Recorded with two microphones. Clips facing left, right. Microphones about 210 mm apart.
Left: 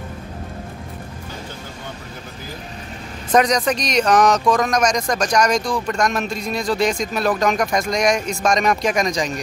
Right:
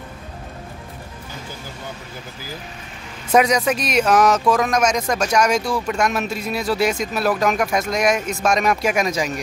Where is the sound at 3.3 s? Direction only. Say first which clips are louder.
Even; 5° right (ahead or behind).